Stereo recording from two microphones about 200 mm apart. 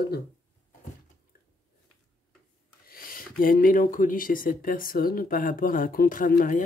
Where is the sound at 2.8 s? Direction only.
45° left (ahead or behind).